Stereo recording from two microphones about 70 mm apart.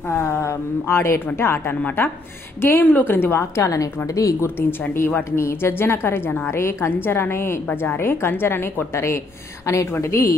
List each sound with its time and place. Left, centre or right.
0.1 s a woman's voice: left
4.6 s a woman's voice: left